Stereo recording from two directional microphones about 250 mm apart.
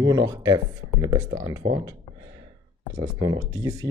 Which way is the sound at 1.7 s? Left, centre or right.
Centre.